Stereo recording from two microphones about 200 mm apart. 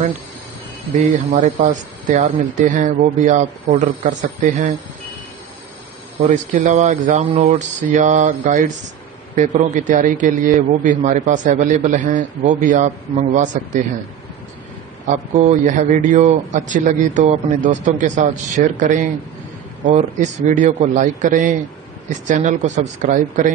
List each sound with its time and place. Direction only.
0.9 s a man's voice: 35° right (ahead or behind)
6.2 s a man's voice: 35° right (ahead or behind)
15.0 s a man's voice: 35° right (ahead or behind)